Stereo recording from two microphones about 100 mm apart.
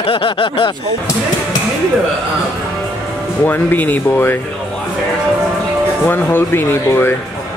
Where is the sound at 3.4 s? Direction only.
20° left (ahead or behind).